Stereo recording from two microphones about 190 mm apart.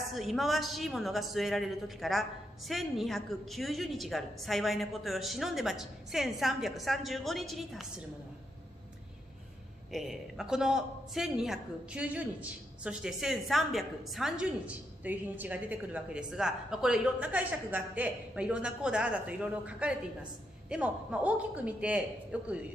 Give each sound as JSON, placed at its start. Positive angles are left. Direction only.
{"t": 0.1, "sound": "a man's voice", "side_deg": 0}
{"t": 9.8, "sound": "a man's voice", "side_deg": 0}